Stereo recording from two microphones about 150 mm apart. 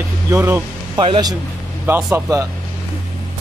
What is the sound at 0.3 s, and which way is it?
Speech, 15° right (ahead or behind).